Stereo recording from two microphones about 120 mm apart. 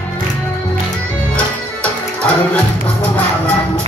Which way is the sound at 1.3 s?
10° left (ahead or behind).